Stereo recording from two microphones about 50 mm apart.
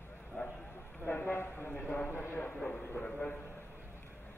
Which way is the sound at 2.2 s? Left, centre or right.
Left.